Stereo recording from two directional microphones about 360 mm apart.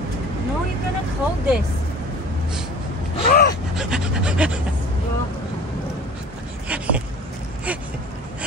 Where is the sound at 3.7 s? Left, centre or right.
Centre.